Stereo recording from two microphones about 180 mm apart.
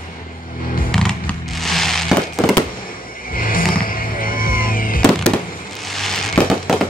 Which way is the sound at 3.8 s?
50° left (ahead or behind).